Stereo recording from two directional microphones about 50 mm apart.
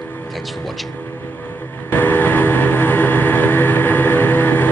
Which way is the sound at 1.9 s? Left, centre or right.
Left.